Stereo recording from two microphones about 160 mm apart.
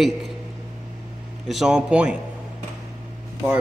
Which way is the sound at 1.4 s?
Centre (ahead or behind).